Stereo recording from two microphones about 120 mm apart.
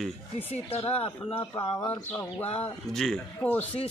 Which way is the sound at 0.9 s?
55° left (ahead or behind).